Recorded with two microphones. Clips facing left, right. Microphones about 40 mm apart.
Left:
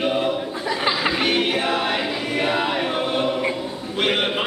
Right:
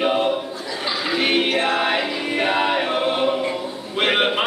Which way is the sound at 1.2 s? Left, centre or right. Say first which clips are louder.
Right 4 dB; centre.